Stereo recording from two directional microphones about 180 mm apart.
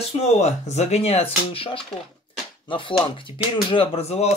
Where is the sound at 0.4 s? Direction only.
40° left (ahead or behind).